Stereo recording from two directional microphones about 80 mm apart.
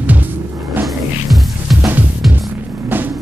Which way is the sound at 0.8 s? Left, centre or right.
Centre.